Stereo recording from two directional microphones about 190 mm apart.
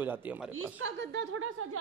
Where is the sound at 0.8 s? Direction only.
80° right.